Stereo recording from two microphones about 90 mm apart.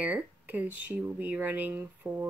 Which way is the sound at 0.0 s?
20° right (ahead or behind).